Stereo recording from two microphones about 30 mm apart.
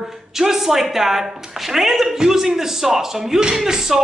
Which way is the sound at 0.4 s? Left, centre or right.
Centre.